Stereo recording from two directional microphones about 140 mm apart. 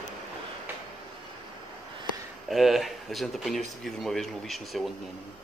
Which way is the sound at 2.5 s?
Centre (ahead or behind).